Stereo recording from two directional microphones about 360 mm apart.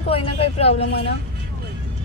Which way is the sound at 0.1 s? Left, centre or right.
Centre.